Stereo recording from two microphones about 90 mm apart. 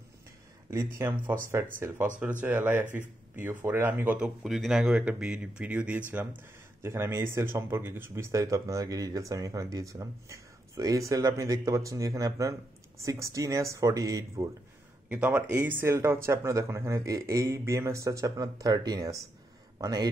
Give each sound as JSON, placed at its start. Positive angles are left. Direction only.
{"t": 0.7, "sound": "speech", "side_deg": -30}
{"t": 4.4, "sound": "speech", "side_deg": -5}
{"t": 6.8, "sound": "speech", "side_deg": -30}
{"t": 15.0, "sound": "speech", "side_deg": -15}